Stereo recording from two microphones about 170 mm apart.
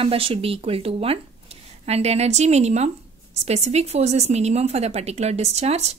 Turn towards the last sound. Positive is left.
turn(degrees=-40)  # may be behind; listen again after turning